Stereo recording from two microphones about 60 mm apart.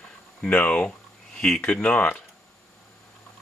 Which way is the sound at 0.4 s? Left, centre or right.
Centre.